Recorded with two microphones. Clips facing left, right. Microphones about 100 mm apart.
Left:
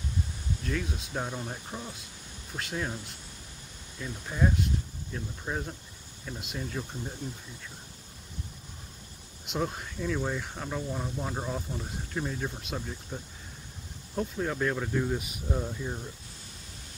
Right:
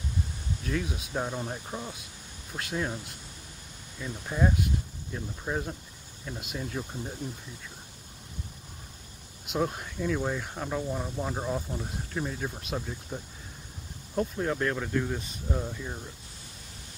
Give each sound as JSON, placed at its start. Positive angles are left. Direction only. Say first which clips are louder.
{"t": 0.7, "sound": "speech", "louder": "right 2 dB", "side_deg": -5}
{"t": 9.5, "sound": "speech", "louder": "right 2 dB", "side_deg": 0}